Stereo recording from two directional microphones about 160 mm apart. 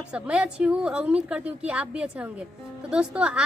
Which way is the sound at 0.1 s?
5° right (ahead or behind).